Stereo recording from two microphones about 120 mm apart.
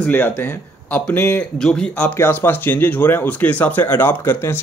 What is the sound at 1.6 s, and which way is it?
Speech, 5° left (ahead or behind).